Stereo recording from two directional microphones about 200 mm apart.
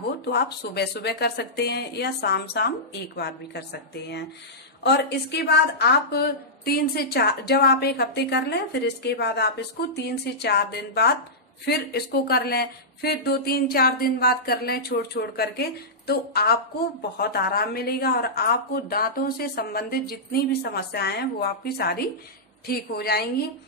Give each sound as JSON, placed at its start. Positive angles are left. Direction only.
{"t": 0.2, "sound": "a woman's voice", "side_deg": 55}